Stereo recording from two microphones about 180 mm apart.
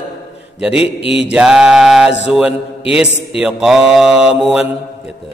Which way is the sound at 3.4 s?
5° right (ahead or behind).